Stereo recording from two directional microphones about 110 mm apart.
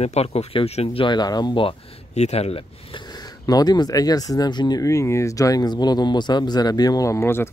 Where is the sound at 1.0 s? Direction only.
40° left (ahead or behind).